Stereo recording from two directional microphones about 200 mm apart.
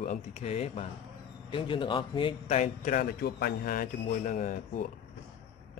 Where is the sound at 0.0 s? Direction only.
35° left (ahead or behind).